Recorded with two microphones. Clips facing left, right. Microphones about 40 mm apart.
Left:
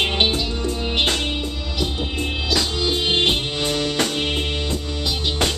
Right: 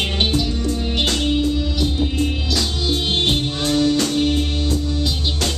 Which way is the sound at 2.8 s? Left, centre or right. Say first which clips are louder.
Even; left.